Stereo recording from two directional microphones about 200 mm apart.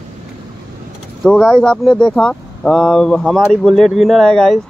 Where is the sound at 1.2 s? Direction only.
5° left (ahead or behind).